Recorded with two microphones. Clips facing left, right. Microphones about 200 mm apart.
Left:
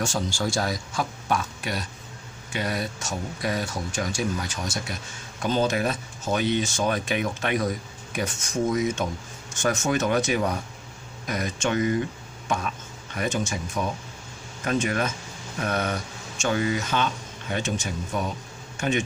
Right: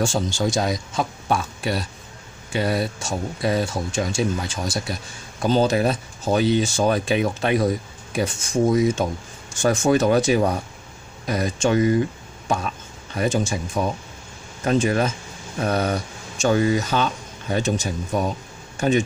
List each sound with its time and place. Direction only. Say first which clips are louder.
0.0 s speech: right 5 dB; 25° right (ahead or behind)
13.1 s speech: right 5 dB; 30° right (ahead or behind)